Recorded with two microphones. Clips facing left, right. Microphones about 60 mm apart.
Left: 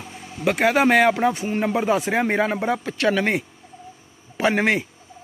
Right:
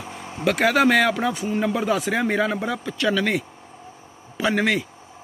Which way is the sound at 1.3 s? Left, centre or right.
Left.